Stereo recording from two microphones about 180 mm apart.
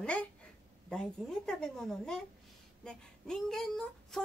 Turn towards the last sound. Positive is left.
turn(degrees=0)  # may be behind; listen again after turning